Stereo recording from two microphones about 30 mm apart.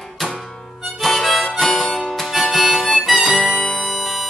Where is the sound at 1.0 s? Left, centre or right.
Centre.